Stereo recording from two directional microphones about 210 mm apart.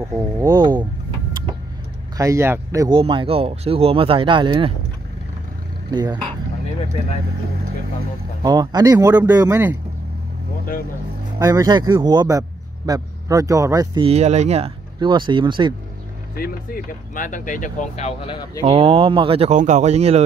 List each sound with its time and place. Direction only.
0.1 s a man's voice: 15° right (ahead or behind)
2.1 s a man's voice: 15° right (ahead or behind)
5.9 s speech: 20° right (ahead or behind)
8.4 s speech: 20° right (ahead or behind)
11.3 s a man's voice: 15° right (ahead or behind)
16.3 s speech: 45° left (ahead or behind); by 18.6 s 20° left (ahead or behind)
18.6 s a man's voice: 25° right (ahead or behind)